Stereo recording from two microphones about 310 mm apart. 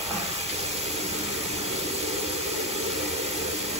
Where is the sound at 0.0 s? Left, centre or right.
Centre.